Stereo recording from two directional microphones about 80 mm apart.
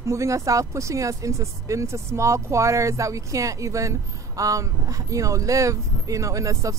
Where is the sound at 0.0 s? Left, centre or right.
Right.